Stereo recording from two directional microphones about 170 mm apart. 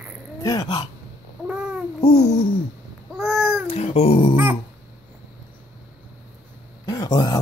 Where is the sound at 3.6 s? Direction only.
40° left (ahead or behind).